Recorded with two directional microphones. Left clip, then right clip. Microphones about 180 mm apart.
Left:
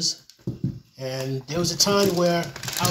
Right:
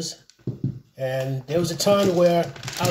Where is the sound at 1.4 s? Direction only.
55° right (ahead or behind).